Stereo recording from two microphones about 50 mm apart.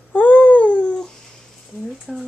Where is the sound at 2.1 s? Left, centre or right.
Centre.